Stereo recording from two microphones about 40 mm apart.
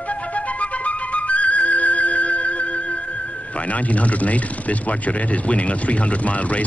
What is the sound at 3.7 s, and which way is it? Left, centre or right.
Speech, left.